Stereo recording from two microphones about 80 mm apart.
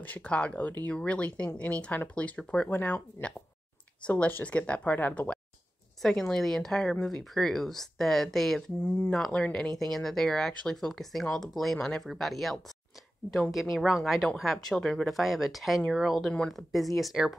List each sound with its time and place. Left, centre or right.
0.0 s speech: centre
6.0 s speech: centre
16.3 s speech: centre
16.5 s speech: centre